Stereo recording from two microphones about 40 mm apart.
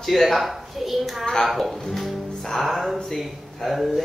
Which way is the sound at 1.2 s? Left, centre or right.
Centre.